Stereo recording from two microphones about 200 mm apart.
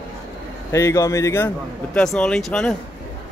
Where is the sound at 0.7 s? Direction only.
15° left (ahead or behind).